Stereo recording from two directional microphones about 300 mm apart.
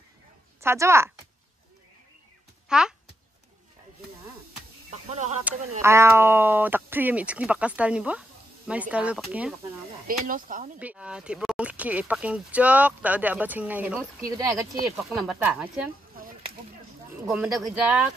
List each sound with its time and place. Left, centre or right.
0.6 s a woman's voice: centre
2.7 s a child's voice: centre
4.9 s speech: right
5.8 s speech: centre
10.0 s speech: right
10.8 s speech: centre
17.3 s speech: centre